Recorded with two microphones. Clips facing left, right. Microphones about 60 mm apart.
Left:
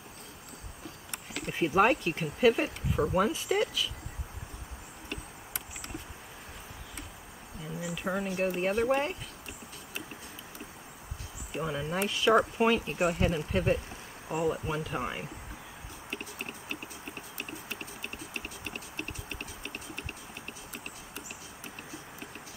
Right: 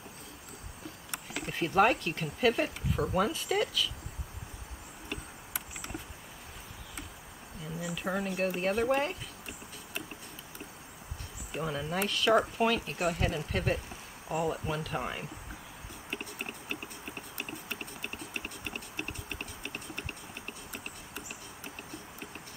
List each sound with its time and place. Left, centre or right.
1.1 s insect: centre
1.5 s speech: centre
5.1 s insect: centre
7.8 s speech: centre
11.5 s speech: centre
16.1 s a sound: centre